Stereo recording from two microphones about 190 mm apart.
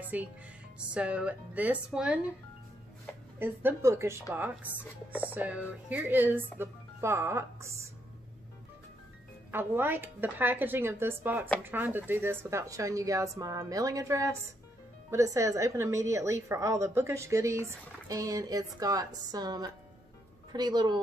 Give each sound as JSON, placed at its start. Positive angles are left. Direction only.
{"t": 0.1, "sound": "a woman's voice", "side_deg": -10}
{"t": 3.3, "sound": "a woman's voice", "side_deg": -10}
{"t": 9.5, "sound": "a woman's voice", "side_deg": -10}